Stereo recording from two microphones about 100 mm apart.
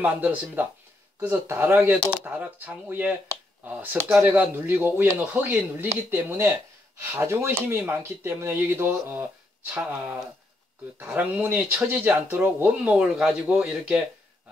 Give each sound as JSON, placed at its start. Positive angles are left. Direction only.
{"t": 0.0, "sound": "speech", "side_deg": -15}